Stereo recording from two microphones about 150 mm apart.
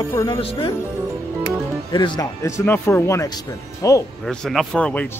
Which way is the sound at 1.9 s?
30° left (ahead or behind).